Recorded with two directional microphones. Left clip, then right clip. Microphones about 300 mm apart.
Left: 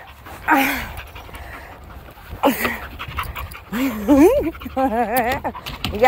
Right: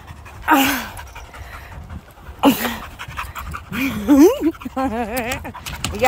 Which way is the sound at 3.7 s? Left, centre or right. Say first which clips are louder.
Even; centre.